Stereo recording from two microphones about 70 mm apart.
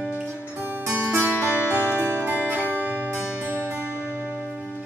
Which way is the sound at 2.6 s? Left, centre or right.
Left.